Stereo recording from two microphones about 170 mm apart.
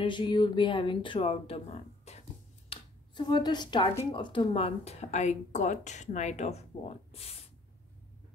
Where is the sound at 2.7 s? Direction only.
25° left (ahead or behind).